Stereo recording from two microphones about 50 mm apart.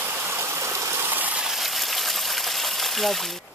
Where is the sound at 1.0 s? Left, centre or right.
Right.